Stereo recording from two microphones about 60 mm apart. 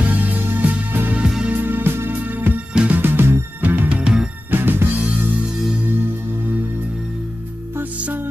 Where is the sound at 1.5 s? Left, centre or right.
Right.